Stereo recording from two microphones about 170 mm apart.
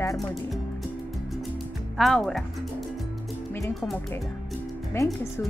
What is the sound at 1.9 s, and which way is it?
Speech, centre (ahead or behind).